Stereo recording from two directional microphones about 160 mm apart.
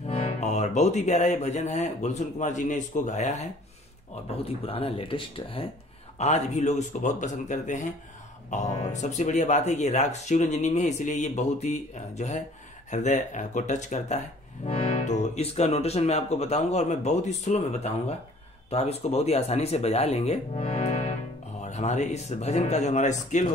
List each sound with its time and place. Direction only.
0.0 s speech: 40° left (ahead or behind)
4.5 s speech: 35° left (ahead or behind)